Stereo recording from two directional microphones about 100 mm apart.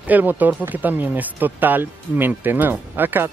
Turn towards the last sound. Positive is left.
turn(degrees=-20)  # may be behind; listen again after turning